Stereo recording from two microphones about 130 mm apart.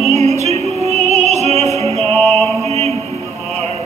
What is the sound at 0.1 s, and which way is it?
Music, 60° right (ahead or behind).